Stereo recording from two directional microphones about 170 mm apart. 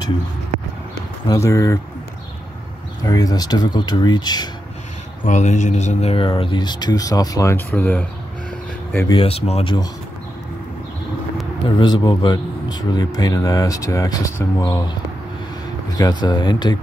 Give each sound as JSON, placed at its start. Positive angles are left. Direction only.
{"t": 1.2, "sound": "speech", "side_deg": 20}
{"t": 3.0, "sound": "speech", "side_deg": 20}
{"t": 5.2, "sound": "speech", "side_deg": 45}
{"t": 9.1, "sound": "speech", "side_deg": 35}
{"t": 11.7, "sound": "speech", "side_deg": 25}
{"t": 16.0, "sound": "speech", "side_deg": 25}